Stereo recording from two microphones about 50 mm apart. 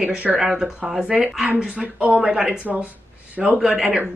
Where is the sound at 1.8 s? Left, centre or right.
Right.